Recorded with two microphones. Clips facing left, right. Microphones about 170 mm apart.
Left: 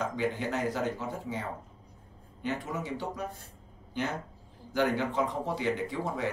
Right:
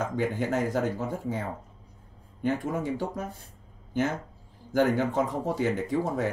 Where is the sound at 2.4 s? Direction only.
50° right (ahead or behind).